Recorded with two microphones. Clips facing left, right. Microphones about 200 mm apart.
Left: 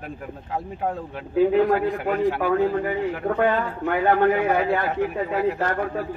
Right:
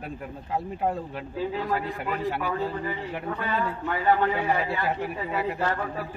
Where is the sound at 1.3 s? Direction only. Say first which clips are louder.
Left 11 dB; 60° left (ahead or behind).